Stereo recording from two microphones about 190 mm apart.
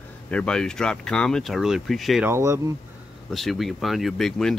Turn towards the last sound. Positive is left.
turn(degrees=0)  # may be behind; listen again after turning